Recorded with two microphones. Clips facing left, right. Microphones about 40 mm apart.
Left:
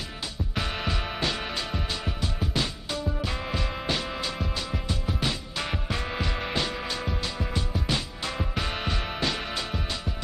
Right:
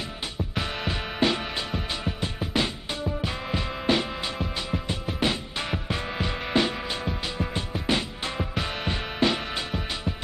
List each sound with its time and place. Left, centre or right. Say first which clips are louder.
0.6 s music: even; centre
1.2 s music: right 7 dB; right
1.7 s music: right 1 dB; centre
2.1 s music: right 2 dB; right
3.5 s music: right 7 dB; right
7.3 s music: right 1 dB; right
8.4 s music: right 1 dB; centre
8.8 s music: right 4 dB; centre